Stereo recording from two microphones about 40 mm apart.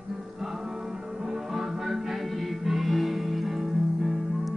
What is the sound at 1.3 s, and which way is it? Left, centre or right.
Music, centre.